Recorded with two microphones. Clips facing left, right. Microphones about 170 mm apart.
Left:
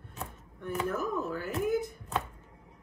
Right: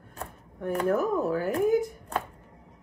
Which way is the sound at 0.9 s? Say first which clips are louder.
Right 7 dB; 35° right (ahead or behind).